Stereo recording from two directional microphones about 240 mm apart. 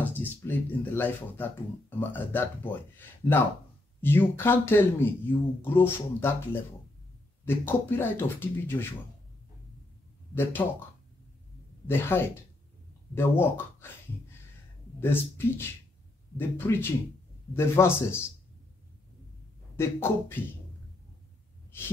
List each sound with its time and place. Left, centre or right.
0.0 s speech: centre
7.4 s speech: centre
10.6 s speech: centre
11.9 s speech: centre
15.0 s speech: centre
19.8 s speech: centre